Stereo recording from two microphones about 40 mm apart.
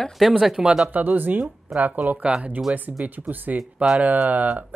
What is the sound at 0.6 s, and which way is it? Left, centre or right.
Speech, centre.